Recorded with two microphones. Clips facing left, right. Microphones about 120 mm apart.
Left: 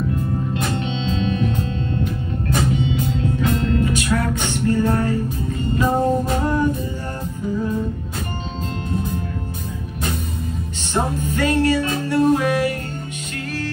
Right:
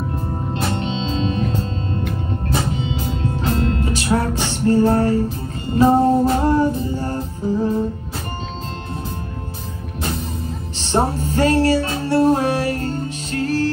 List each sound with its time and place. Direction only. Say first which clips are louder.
0.6 s music: right 1 dB; 30° right (ahead or behind)
10.8 s music: right 4 dB; 35° right (ahead or behind)